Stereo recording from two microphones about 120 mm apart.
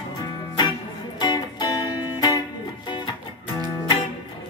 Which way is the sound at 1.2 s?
35° left (ahead or behind).